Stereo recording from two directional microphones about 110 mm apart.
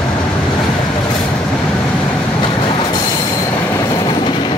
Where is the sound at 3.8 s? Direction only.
45° left (ahead or behind).